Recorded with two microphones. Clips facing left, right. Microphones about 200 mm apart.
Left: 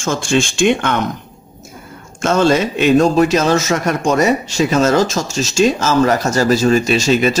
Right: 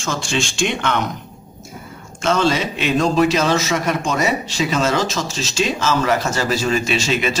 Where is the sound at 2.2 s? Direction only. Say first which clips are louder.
Left 5 dB; 45° left (ahead or behind).